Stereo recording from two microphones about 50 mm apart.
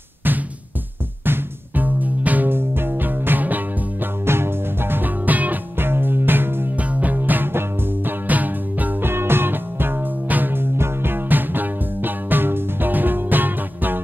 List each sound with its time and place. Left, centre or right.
1.2 s music: right
2.5 s music: right
4.3 s music: right
5.8 s music: right
6.8 s music: right
9.0 s music: right